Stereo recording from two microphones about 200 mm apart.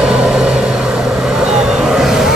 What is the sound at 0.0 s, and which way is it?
Vehicle, 5° right (ahead or behind).